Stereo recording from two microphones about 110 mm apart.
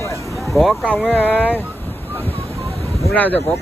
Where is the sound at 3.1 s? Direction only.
15° left (ahead or behind).